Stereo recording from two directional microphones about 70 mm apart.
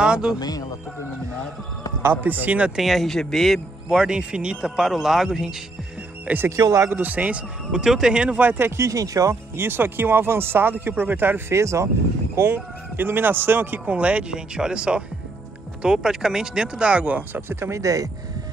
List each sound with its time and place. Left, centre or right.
0.0 s speech: centre
0.4 s speech: left
2.0 s speech: right
2.8 s a man's voice: centre
3.9 s speech: centre
6.2 s speech: right
6.6 s speech: right
6.9 s speech: right
8.5 s speech: right
8.8 s speech: right
9.6 s speech: right
12.5 s speech: right
17.5 s speech: right